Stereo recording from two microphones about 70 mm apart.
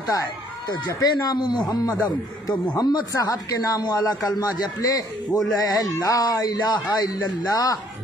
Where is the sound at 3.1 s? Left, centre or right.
Left.